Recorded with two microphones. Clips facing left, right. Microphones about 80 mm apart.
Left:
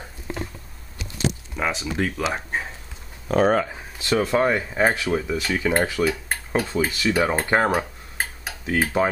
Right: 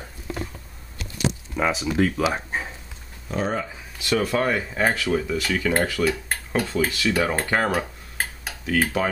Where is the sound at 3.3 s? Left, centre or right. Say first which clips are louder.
Left 7 dB; left.